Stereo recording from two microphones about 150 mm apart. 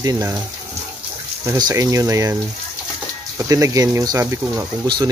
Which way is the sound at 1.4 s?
20° right (ahead or behind).